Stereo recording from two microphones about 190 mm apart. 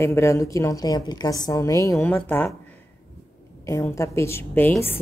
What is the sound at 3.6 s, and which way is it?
A woman's voice, 15° left (ahead or behind).